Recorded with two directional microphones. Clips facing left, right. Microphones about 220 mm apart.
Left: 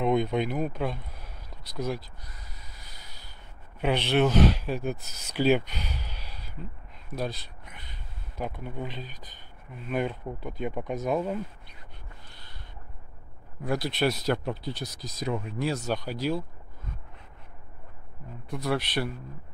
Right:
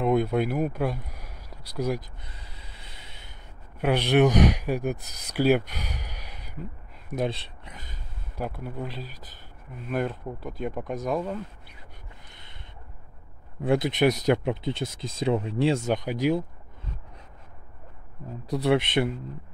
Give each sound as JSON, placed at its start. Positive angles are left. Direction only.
{"t": 0.0, "sound": "speech", "side_deg": -5}
{"t": 3.8, "sound": "speech", "side_deg": -10}
{"t": 8.4, "sound": "speech", "side_deg": -5}
{"t": 13.6, "sound": "speech", "side_deg": -25}
{"t": 18.7, "sound": "speech", "side_deg": -20}